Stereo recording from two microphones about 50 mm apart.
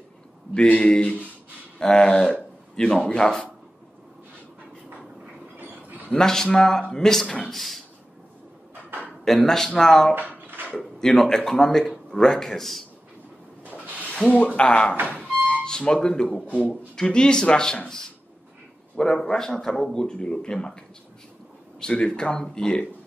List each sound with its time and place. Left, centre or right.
0.6 s speech: left
5.6 s a sound: right
6.1 s a man's voice: centre
9.2 s a man's voice: centre
10.1 s drawer open or close: right
11.0 s a man's voice: centre
14.2 s a man's voice: centre
14.6 s speech: left
15.0 s music: right
15.6 s a man's voice: centre
21.9 s speech: centre